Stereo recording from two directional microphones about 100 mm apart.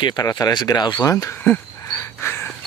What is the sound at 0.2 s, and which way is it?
Speech, 35° left (ahead or behind).